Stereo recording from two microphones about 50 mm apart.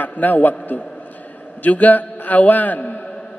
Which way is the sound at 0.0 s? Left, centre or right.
Left.